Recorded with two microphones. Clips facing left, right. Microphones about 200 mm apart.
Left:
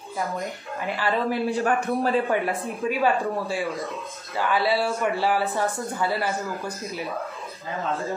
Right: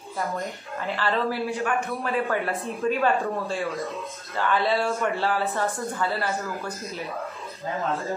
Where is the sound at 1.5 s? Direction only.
35° left (ahead or behind).